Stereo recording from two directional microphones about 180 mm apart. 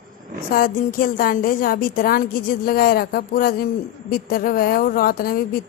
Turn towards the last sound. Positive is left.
turn(degrees=55)  # may be behind; listen again after turning